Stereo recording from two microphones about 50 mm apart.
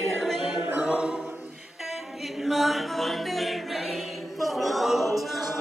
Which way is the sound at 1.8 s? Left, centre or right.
Centre.